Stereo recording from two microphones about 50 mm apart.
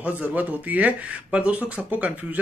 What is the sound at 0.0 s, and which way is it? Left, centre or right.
A man's voice, right.